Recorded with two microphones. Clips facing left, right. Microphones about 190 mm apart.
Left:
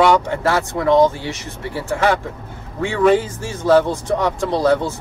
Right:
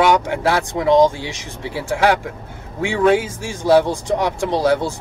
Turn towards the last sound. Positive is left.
turn(degrees=-15)  # may be behind; listen again after turning